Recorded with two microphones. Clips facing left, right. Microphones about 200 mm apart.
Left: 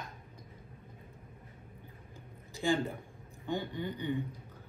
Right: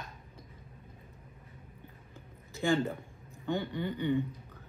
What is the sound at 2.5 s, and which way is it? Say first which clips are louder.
A man's voice: right 2 dB; 15° left (ahead or behind).